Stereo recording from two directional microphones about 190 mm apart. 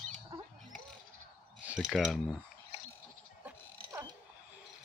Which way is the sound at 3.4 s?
15° right (ahead or behind).